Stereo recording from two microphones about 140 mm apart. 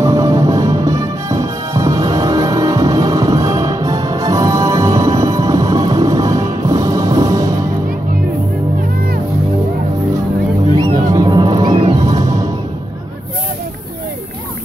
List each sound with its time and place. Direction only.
0.0 s music: 25° right (ahead or behind)
11.1 s music: 30° right (ahead or behind)